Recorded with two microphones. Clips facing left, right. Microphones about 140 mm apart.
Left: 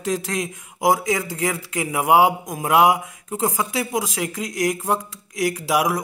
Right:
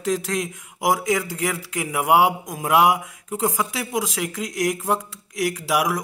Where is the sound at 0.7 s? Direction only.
25° left (ahead or behind).